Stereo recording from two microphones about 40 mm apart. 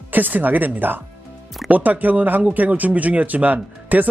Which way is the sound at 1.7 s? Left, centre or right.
Right.